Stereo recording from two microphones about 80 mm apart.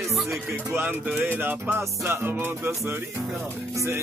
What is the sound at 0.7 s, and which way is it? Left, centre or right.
Music, right.